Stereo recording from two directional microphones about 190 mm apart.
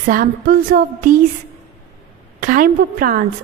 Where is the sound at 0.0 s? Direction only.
45° right (ahead or behind).